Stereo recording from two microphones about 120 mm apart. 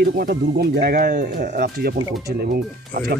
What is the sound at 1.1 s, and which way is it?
Speech, 90° right.